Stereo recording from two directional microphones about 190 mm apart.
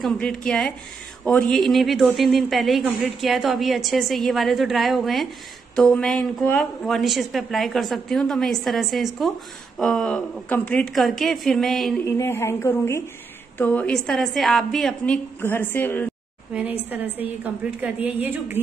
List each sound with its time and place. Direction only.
0.0 s speech: 5° left (ahead or behind)
12.2 s a woman's voice: 10° left (ahead or behind)
16.5 s a woman's voice: 10° right (ahead or behind)